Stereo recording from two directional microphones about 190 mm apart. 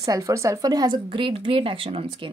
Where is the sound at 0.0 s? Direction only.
15° right (ahead or behind).